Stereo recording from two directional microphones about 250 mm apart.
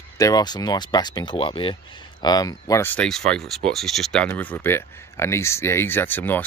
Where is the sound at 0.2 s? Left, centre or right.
Centre.